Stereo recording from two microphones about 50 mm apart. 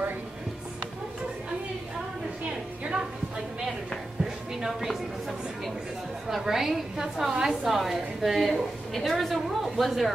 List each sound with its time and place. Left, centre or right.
2.8 s a sound: centre
4.2 s music: centre
6.2 s a woman's voice: centre